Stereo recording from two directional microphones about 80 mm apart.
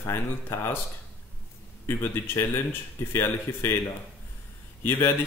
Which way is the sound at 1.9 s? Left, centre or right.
Left.